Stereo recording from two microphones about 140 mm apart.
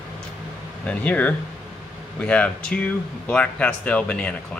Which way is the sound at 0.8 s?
10° left (ahead or behind).